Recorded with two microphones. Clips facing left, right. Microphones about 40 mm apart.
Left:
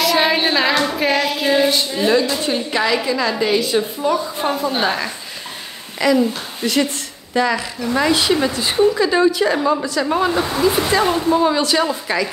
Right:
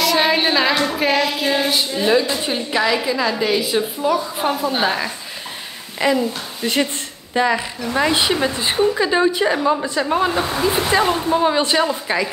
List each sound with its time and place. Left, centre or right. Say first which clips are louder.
0.0 s child singing: even; centre
2.4 s a woman's voice: even; centre
6.0 s speech: left 2 dB; right
7.3 s speech: even; centre
7.8 s speech: left 2 dB; centre
9.6 s a woman's voice: even; centre